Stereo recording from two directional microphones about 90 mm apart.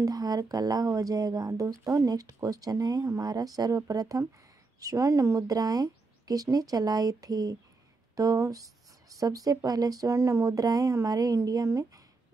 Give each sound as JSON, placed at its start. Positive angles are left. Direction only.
{"t": 0.0, "sound": "speech", "side_deg": -45}